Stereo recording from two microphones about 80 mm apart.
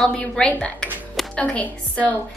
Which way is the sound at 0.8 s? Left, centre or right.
Centre.